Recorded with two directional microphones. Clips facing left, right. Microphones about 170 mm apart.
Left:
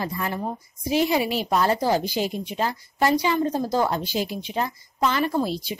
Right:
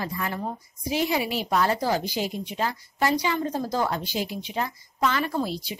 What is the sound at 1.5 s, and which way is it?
Speech, 30° left (ahead or behind).